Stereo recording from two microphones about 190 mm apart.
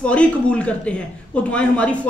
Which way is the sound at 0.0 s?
5° left (ahead or behind).